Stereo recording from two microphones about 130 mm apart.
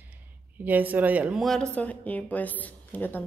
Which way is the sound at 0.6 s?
15° right (ahead or behind).